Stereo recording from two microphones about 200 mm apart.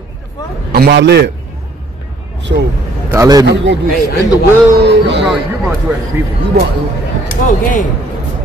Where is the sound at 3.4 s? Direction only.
60° right (ahead or behind).